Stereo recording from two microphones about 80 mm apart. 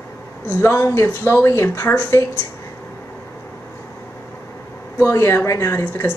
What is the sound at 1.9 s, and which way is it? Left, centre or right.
Speech, left.